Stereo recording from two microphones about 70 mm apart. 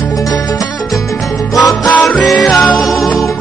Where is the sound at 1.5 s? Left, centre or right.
Left.